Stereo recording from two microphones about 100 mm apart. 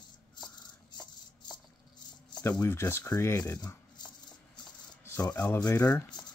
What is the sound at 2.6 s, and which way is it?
Speech, 25° left (ahead or behind).